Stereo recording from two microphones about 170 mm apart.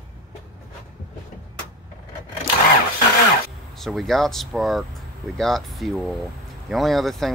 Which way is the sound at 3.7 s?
Centre (ahead or behind).